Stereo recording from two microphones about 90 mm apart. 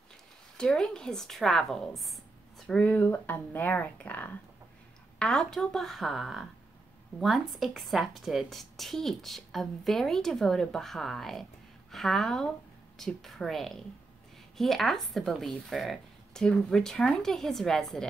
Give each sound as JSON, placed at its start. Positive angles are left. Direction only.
{"t": 0.6, "sound": "speech", "side_deg": 10}
{"t": 2.8, "sound": "speech", "side_deg": 20}
{"t": 5.2, "sound": "speech", "side_deg": 5}